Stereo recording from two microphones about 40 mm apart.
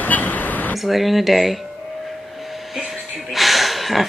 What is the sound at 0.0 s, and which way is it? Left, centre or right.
Vehicle, left.